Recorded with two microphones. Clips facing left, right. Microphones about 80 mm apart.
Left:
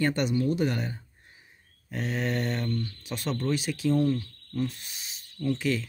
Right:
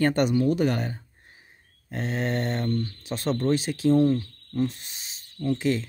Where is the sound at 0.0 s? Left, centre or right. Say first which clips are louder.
Right 4 dB; right.